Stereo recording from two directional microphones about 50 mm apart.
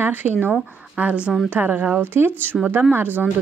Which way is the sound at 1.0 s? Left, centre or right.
Right.